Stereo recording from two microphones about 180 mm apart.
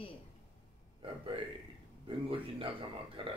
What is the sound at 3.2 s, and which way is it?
Speech, 30° right (ahead or behind).